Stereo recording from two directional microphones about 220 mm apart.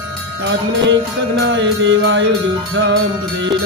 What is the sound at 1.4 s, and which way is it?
Music, 55° right (ahead or behind).